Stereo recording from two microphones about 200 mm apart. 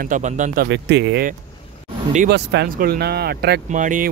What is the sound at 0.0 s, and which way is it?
Speech, 40° right (ahead or behind).